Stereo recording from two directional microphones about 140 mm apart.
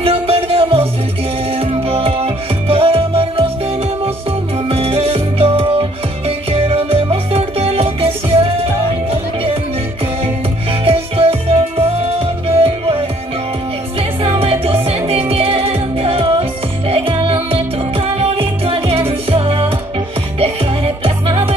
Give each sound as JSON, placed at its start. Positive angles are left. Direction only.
{"t": 0.0, "sound": "music", "side_deg": -45}
{"t": 4.6, "sound": "music", "side_deg": -45}
{"t": 10.9, "sound": "music", "side_deg": -40}
{"t": 14.2, "sound": "music", "side_deg": -45}